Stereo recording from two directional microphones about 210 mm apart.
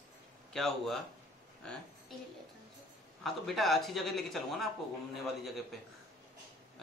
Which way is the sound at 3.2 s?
Centre (ahead or behind).